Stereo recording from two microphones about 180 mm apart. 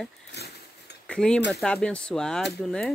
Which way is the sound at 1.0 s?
5° left (ahead or behind).